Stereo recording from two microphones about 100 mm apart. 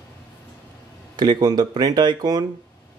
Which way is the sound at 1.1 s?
45° right (ahead or behind).